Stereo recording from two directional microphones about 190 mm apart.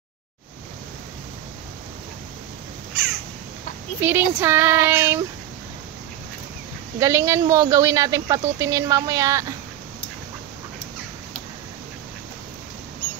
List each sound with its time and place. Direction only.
4.0 s speech: 10° right (ahead or behind)
7.0 s speech: 15° right (ahead or behind)